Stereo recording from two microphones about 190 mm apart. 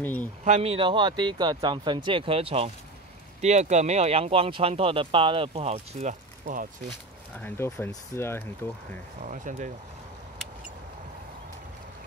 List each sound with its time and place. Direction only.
0.0 s speech: 10° left (ahead or behind)
0.5 s speech: 30° right (ahead or behind)
7.3 s speech: 10° left (ahead or behind)
9.2 s speech: 45° right (ahead or behind)